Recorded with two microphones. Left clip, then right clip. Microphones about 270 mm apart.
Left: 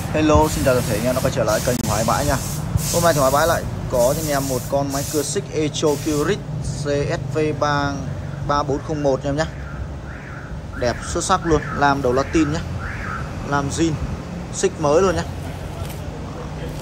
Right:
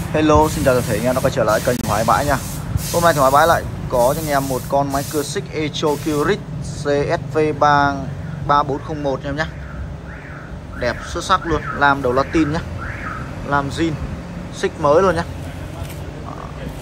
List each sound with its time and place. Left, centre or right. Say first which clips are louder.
0.1 s speech: right 2 dB; centre
10.8 s speech: even; centre